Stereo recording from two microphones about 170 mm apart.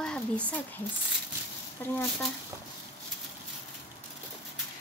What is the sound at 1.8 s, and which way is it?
Speech, 15° left (ahead or behind).